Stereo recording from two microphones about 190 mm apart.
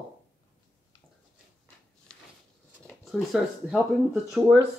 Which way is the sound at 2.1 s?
5° left (ahead or behind).